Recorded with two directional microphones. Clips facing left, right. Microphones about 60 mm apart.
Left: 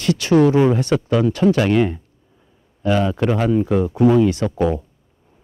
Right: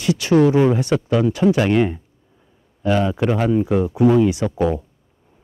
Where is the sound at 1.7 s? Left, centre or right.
Right.